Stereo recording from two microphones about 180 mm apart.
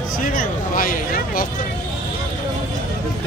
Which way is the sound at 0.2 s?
50° left (ahead or behind).